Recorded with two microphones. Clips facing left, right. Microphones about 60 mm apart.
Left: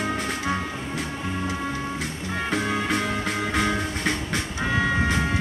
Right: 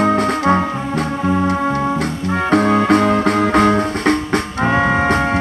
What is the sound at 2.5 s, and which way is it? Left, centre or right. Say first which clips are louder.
Music: right 13 dB; right.